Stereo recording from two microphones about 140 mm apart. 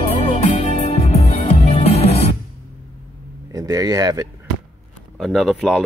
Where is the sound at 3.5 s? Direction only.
25° right (ahead or behind).